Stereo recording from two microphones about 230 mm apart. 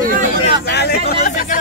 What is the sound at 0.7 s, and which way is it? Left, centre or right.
Chatter, left.